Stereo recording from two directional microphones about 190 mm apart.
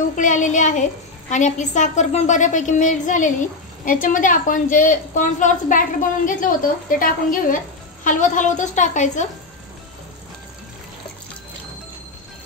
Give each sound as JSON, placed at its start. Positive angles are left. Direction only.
{"t": 0.1, "sound": "a woman's voice", "side_deg": 40}